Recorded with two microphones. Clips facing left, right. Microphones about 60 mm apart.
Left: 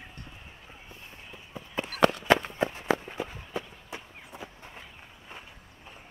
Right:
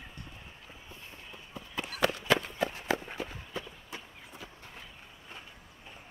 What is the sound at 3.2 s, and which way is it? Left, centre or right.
Run, left.